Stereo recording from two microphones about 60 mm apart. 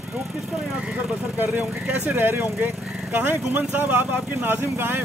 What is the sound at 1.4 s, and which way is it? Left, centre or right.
Speech, right.